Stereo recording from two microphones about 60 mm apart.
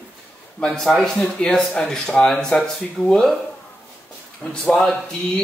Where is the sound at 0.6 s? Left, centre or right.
Centre.